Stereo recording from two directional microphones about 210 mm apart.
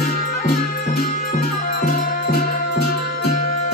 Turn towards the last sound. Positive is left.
turn(degrees=50)  # may be behind; listen again after turning